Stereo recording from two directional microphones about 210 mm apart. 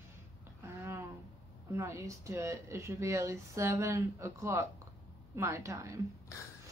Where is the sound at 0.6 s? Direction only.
15° right (ahead or behind).